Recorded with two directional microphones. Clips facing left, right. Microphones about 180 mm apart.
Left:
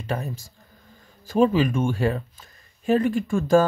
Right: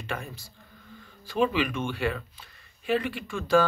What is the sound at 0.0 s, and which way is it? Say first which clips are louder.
Speech: left 6 dB; 40° left (ahead or behind).